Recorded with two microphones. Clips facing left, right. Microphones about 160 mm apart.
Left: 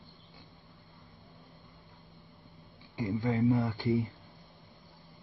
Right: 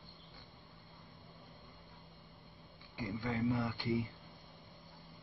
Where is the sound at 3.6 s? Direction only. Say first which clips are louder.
Left 6 dB; 40° left (ahead or behind).